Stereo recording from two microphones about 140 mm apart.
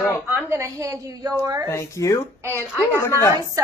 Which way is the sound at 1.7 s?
20° left (ahead or behind).